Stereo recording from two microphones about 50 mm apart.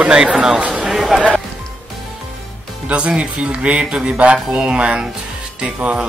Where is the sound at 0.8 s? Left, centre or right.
Centre.